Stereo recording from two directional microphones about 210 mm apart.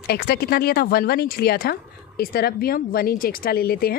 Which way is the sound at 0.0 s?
50° left (ahead or behind).